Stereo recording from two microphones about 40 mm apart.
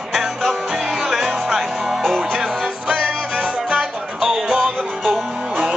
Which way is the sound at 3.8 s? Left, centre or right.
Centre.